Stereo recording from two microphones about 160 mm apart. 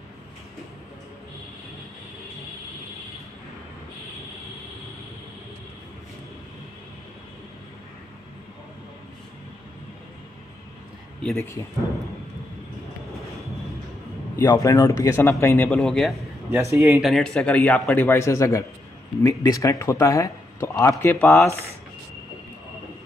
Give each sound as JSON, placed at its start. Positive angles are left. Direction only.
{"t": 11.1, "sound": "a sound", "side_deg": 0}
{"t": 14.4, "sound": "speech", "side_deg": 25}
{"t": 15.7, "sound": "a man's voice", "side_deg": 0}
{"t": 16.5, "sound": "speech", "side_deg": -20}
{"t": 17.0, "sound": "speech", "side_deg": 5}